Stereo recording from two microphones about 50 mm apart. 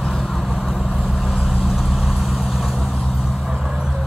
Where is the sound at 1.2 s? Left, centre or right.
Centre.